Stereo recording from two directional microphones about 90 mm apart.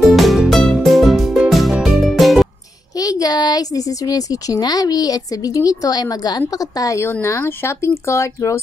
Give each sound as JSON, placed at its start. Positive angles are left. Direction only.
{"t": 0.0, "sound": "music", "side_deg": 0}
{"t": 3.0, "sound": "speech", "side_deg": 40}
{"t": 7.1, "sound": "speech", "side_deg": 30}